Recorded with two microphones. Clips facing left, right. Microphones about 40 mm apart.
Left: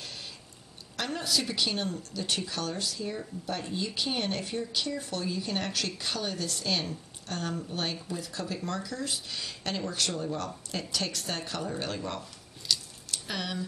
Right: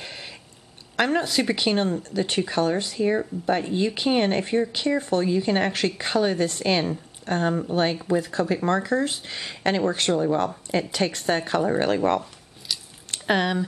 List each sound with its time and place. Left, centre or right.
0.0 s a sound: right
0.9 s speech: right
12.7 s keys jangling: centre
13.1 s speech: right